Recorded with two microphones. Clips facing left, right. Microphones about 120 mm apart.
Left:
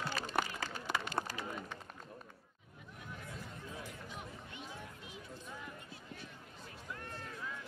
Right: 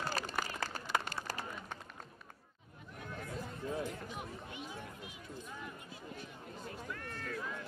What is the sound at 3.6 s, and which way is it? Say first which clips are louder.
Run: right 12 dB; 50° right (ahead or behind).